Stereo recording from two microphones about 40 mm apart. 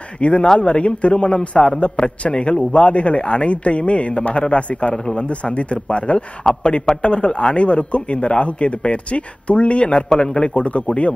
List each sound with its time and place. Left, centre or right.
0.2 s a man's voice: left
4.9 s a man's voice: left
5.3 s a man's voice: left